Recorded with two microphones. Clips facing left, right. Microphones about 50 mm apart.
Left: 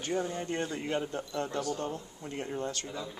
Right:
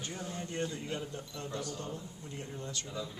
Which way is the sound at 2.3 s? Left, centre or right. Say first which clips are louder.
Left 7 dB; left.